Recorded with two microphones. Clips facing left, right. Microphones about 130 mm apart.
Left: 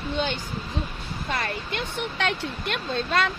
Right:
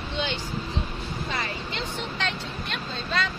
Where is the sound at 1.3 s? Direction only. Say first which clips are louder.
Left 5 dB; 55° left (ahead or behind).